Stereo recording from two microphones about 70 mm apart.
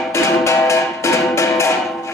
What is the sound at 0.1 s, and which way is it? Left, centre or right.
Music, left.